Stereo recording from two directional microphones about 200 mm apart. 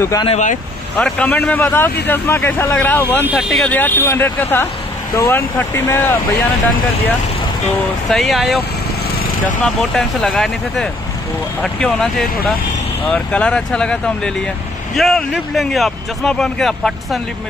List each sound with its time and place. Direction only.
0.0 s speech: 15° left (ahead or behind)
0.3 s speech: 40° left (ahead or behind)
0.9 s speech: 5° left (ahead or behind)
8.1 s speech: centre (ahead or behind)
9.6 s speech: 5° left (ahead or behind)